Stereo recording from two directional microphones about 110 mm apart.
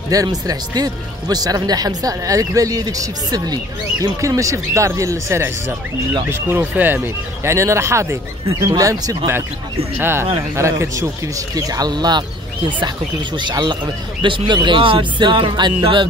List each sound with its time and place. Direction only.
0.1 s speech: 35° right (ahead or behind)
13.4 s speech: 45° right (ahead or behind)